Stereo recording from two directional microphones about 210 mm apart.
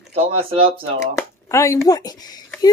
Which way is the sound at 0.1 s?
25° right (ahead or behind).